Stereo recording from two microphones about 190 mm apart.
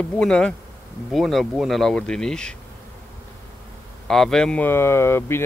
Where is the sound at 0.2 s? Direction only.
5° left (ahead or behind).